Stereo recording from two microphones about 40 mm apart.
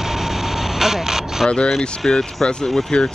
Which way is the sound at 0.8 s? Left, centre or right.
Centre.